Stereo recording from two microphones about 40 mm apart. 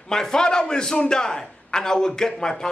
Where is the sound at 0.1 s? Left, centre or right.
Centre.